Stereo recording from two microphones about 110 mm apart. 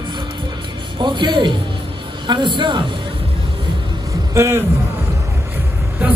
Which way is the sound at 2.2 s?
45° right (ahead or behind).